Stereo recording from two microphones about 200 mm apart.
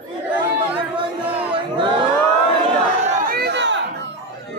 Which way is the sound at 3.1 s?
45° right (ahead or behind).